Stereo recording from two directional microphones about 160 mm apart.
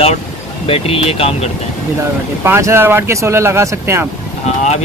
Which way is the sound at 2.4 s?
15° right (ahead or behind).